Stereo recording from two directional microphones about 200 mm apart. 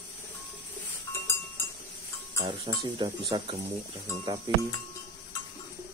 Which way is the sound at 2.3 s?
20° right (ahead or behind).